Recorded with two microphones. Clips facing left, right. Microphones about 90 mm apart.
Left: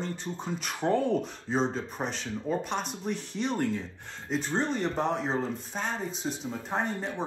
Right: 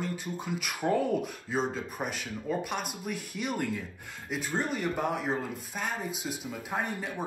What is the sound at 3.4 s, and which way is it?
Speech, 30° left (ahead or behind).